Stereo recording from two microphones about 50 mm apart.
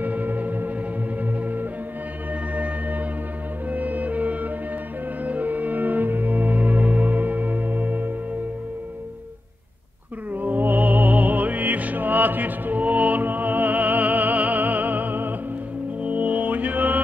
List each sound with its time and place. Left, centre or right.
0.0 s gong: right
1.2 s music: right
10.3 s music: right